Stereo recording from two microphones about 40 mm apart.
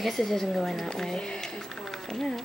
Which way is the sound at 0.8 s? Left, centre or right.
Centre.